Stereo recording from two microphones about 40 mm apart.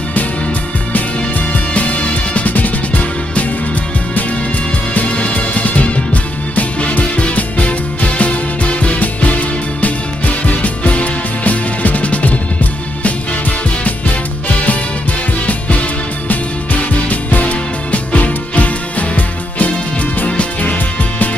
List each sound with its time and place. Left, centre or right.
1.5 s music: left
5.3 s music: left
17.1 s music: left